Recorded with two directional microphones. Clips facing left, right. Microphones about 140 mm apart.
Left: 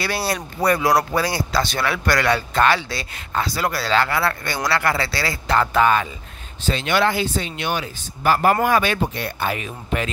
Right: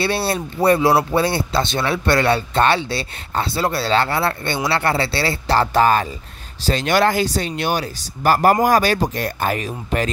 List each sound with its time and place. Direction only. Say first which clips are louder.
0.0 s speech: right 4 dB; 30° right (ahead or behind)